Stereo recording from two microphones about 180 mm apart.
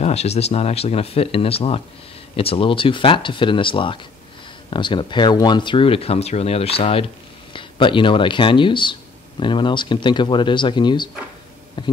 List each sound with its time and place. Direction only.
0.0 s a man's voice: 35° left (ahead or behind)